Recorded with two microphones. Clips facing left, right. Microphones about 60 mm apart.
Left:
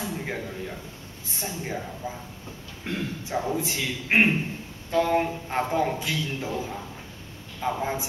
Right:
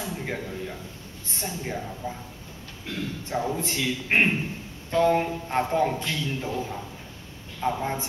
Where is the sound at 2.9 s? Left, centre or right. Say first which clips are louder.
Left 3 dB; left.